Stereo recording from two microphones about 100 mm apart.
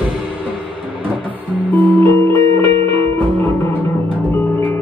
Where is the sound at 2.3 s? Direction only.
55° right (ahead or behind).